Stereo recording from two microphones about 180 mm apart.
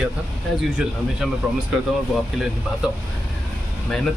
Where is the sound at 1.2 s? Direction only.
Centre (ahead or behind).